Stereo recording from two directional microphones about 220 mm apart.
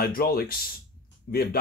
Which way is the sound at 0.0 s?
45° left (ahead or behind).